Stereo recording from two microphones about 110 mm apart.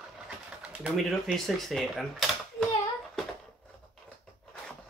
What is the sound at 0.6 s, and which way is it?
Speech, 5° right (ahead or behind).